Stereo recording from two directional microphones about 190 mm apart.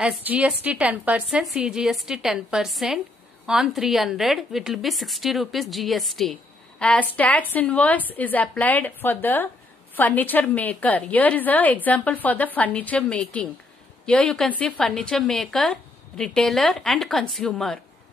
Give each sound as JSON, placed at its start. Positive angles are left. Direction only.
{"t": 0.0, "sound": "a woman's voice", "side_deg": -5}